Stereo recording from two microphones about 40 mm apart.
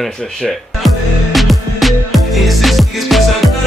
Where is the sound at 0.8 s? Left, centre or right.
Centre.